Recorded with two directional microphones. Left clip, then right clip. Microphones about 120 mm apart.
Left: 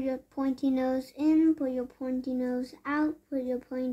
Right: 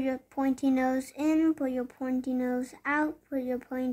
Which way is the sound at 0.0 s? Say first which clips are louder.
Right 1 dB; 35° right (ahead or behind).